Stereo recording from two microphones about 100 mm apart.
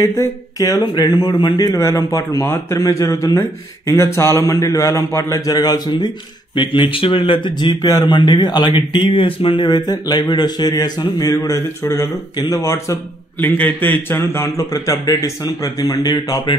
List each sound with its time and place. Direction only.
0.6 s speech: 40° left (ahead or behind)
2.4 s speech: 25° left (ahead or behind); by 9.7 s 65° left (ahead or behind)
9.7 s speech: 45° left (ahead or behind)
13.4 s a man's voice: 15° left (ahead or behind); by 16.0 s 40° left (ahead or behind)